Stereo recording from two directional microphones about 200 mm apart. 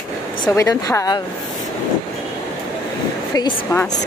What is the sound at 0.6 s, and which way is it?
Speech, 15° left (ahead or behind).